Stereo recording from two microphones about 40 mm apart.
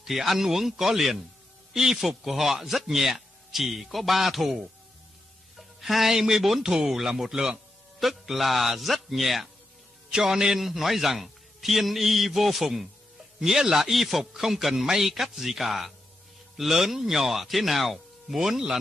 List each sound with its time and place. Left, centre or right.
0.0 s a man's voice: centre
5.6 s a man's voice: centre
10.1 s a man's voice: centre